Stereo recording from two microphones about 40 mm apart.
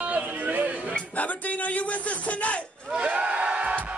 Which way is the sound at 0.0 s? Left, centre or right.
Right.